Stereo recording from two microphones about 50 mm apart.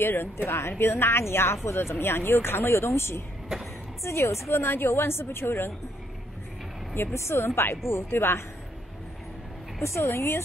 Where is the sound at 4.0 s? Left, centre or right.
Left.